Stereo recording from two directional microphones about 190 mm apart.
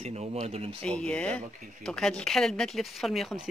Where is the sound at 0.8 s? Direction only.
5° left (ahead or behind).